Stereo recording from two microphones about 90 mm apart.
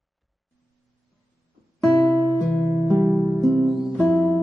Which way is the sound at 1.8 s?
Centre (ahead or behind).